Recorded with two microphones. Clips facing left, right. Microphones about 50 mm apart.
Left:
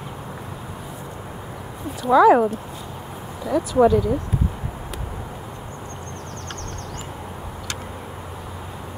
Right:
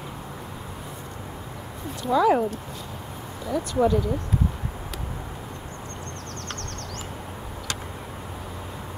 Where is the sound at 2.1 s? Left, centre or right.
Centre.